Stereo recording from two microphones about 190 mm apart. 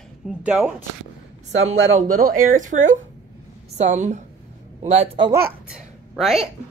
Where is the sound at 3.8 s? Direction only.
40° right (ahead or behind).